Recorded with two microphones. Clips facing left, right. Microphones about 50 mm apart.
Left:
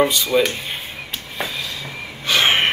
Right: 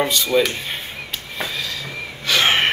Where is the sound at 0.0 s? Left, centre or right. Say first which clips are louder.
Left 1 dB; centre.